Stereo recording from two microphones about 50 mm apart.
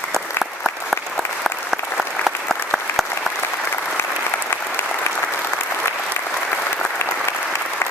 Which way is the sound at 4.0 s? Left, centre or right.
Left.